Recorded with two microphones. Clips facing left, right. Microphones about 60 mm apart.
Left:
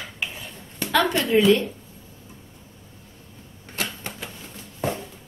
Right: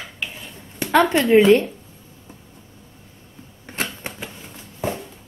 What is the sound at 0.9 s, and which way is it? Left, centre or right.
Speech, right.